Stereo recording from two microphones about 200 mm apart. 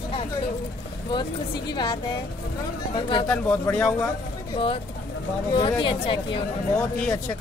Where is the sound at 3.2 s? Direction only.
10° left (ahead or behind).